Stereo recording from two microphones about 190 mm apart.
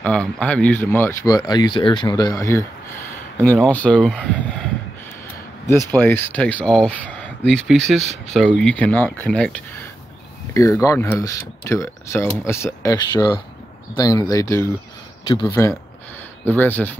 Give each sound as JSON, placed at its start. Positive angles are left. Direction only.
{"t": 0.0, "sound": "speech", "side_deg": 5}
{"t": 1.3, "sound": "speech", "side_deg": 20}
{"t": 5.7, "sound": "speech", "side_deg": 10}